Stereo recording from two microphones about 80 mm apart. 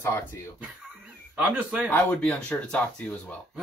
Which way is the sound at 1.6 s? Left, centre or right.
Centre.